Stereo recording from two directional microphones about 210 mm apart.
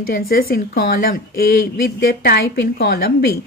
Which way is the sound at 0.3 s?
45° left (ahead or behind).